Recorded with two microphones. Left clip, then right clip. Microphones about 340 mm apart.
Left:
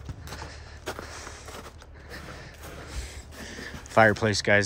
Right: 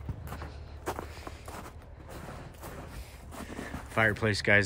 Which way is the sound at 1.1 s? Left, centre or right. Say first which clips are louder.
Left 4 dB; centre.